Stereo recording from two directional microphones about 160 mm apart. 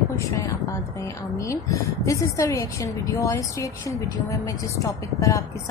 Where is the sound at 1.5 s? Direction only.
20° left (ahead or behind).